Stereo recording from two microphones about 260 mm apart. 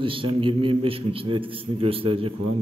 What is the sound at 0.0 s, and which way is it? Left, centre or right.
A man's voice, centre.